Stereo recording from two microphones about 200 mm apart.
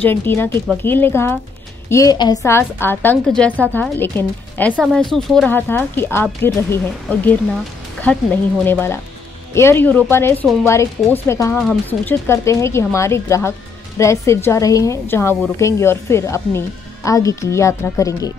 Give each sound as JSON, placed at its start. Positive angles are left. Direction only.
{"t": 0.0, "sound": "a woman's voice", "side_deg": 10}
{"t": 8.6, "sound": "a woman's voice", "side_deg": 10}